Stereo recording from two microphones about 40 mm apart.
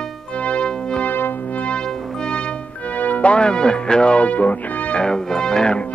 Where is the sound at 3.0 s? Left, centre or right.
Left.